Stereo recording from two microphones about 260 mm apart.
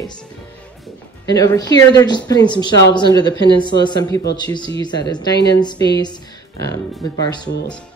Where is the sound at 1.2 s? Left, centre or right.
Centre.